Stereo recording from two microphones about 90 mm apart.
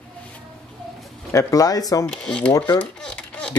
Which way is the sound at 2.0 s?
10° left (ahead or behind).